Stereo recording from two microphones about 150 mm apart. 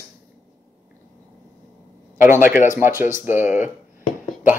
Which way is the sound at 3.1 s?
15° right (ahead or behind).